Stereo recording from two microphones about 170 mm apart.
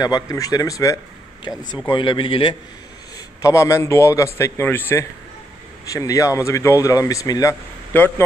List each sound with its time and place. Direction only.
0.0 s speech: 20° left (ahead or behind)
3.4 s a man's voice: 20° left (ahead or behind)